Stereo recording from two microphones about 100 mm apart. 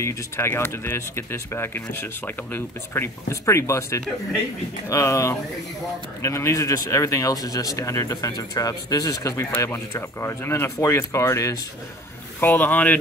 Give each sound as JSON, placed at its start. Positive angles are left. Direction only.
{"t": 0.0, "sound": "speech", "side_deg": 25}
{"t": 12.4, "sound": "speech", "side_deg": 20}